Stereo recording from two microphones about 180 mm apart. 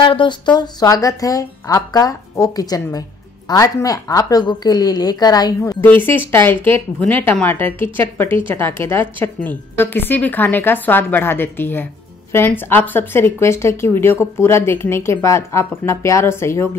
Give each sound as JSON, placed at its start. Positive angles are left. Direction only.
{"t": 0.0, "sound": "a woman's voice", "side_deg": 30}